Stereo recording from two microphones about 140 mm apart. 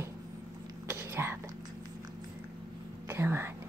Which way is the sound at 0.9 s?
15° right (ahead or behind).